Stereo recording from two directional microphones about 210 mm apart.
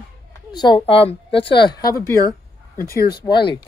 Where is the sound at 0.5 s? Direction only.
20° left (ahead or behind).